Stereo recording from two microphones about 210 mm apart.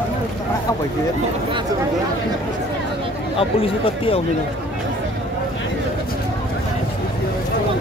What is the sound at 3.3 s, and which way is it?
Speech, 25° left (ahead or behind).